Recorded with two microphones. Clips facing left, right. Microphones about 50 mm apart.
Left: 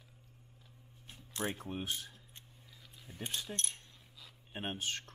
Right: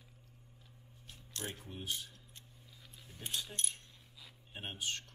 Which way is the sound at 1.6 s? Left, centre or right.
Left.